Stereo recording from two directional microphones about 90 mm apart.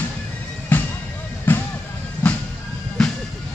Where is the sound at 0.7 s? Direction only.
20° left (ahead or behind).